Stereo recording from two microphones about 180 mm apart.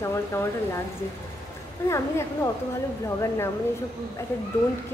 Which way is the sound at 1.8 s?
15° left (ahead or behind).